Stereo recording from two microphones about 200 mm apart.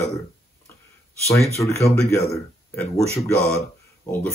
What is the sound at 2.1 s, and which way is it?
Speech, 15° left (ahead or behind).